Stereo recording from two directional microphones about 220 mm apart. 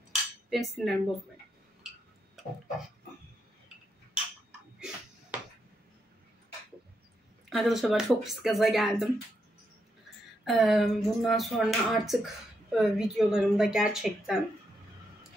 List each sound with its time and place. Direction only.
0.5 s speech: centre (ahead or behind)
3.6 s tick-tock: 5° right (ahead or behind)
7.4 s speech: centre (ahead or behind)
10.4 s speech: centre (ahead or behind)